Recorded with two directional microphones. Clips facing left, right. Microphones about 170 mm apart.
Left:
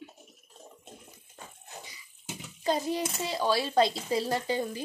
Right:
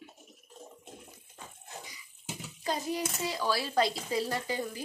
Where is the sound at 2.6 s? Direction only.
25° left (ahead or behind).